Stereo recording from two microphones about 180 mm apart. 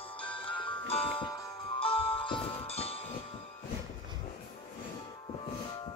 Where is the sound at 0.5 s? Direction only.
30° left (ahead or behind).